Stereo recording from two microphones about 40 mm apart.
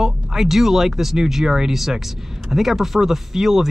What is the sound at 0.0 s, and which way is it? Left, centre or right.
Speech, centre.